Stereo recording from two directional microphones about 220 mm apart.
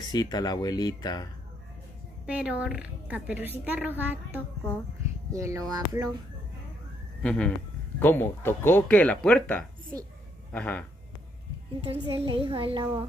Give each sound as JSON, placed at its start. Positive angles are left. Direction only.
{"t": 0.1, "sound": "speech", "side_deg": 20}
{"t": 2.2, "sound": "a woman's voice", "side_deg": -5}
{"t": 5.3, "sound": "a woman's voice", "side_deg": -15}
{"t": 7.2, "sound": "speech", "side_deg": 5}
{"t": 11.8, "sound": "a child's voice", "side_deg": -25}